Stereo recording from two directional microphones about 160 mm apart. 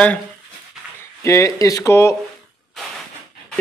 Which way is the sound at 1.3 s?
20° left (ahead or behind).